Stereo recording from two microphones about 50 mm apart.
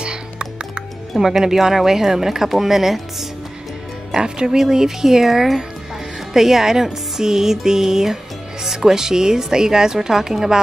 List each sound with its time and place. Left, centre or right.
0.0 s music: centre
1.2 s speech: centre